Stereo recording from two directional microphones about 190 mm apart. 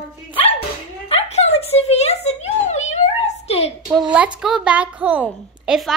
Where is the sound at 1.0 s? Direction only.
35° left (ahead or behind).